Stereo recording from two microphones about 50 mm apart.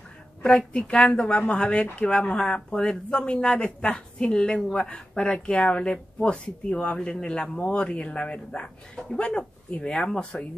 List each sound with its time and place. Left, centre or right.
0.4 s speech: centre